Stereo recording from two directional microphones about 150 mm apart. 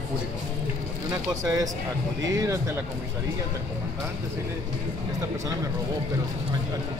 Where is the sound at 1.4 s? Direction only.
25° right (ahead or behind).